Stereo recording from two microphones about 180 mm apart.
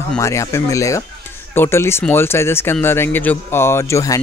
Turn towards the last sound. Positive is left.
turn(degrees=15)  # may be behind; listen again after turning